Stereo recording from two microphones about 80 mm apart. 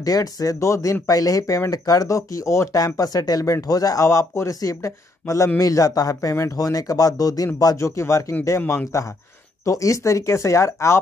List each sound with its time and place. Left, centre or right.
0.0 s speech: left
2.8 s speech: left